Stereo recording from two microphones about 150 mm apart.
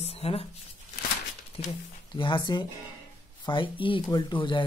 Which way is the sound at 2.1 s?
30° left (ahead or behind).